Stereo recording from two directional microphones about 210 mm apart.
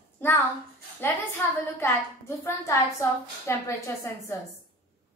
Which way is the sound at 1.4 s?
10° left (ahead or behind).